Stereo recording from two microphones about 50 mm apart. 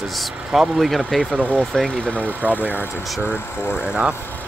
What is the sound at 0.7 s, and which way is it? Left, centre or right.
Speech, centre.